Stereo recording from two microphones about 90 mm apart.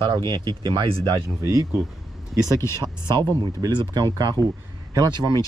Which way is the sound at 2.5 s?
35° left (ahead or behind).